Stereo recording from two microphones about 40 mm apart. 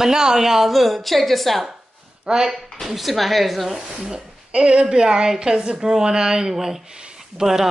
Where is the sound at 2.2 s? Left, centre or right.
Centre.